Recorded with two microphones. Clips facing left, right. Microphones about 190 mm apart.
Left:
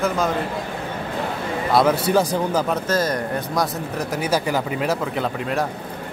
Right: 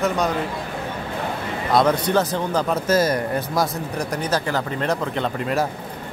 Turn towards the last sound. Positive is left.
turn(degrees=5)  # may be behind; listen again after turning